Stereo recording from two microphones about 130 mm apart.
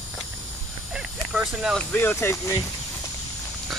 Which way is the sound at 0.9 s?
5° right (ahead or behind).